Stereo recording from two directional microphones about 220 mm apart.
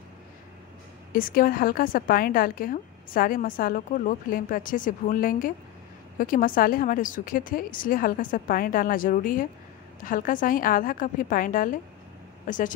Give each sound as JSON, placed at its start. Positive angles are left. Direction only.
{"t": 1.1, "sound": "a woman's voice", "side_deg": 40}